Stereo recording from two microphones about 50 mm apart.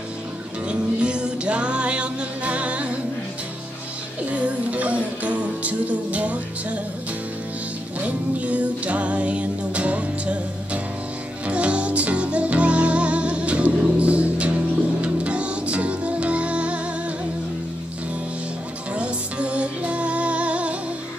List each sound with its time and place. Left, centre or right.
0.7 s music: centre
4.3 s music: right
8.0 s music: right
18.9 s music: right